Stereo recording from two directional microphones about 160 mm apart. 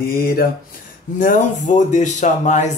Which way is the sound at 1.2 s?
55° left (ahead or behind).